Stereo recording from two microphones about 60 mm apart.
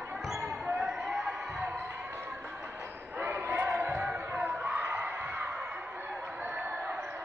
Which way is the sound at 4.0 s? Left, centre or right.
Right.